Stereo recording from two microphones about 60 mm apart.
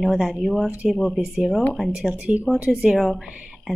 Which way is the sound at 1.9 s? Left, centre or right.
Centre.